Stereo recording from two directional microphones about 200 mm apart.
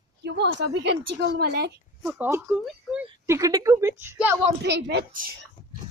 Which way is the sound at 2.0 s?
10° right (ahead or behind).